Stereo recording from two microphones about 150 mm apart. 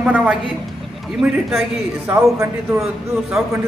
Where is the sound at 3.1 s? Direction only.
Centre (ahead or behind).